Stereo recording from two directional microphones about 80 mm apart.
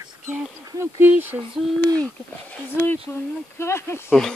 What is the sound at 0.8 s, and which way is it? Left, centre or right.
Speech, right.